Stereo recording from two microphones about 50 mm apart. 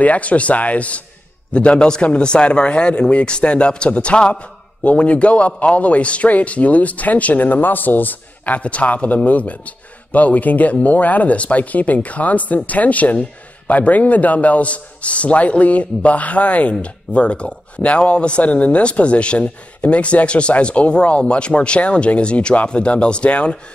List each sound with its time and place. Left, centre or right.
0.0 s a man's voice: left